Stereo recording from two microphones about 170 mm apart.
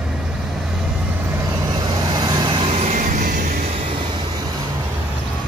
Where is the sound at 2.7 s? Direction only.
40° right (ahead or behind).